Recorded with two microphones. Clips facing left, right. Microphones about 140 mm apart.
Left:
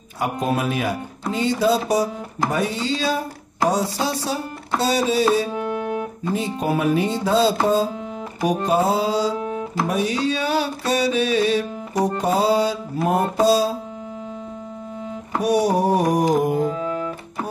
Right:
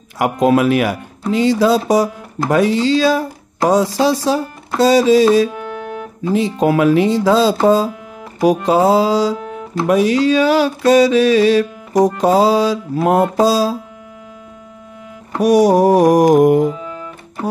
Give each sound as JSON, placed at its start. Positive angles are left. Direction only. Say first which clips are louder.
{"t": 0.2, "sound": "speech", "louder": "right 9 dB", "side_deg": -90}
{"t": 15.4, "sound": "speech", "louder": "right 8 dB", "side_deg": -90}
{"t": 16.7, "sound": "music", "louder": "left 4 dB", "side_deg": 35}